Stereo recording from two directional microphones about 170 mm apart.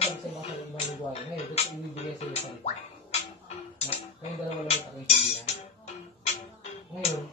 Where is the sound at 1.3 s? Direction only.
40° left (ahead or behind).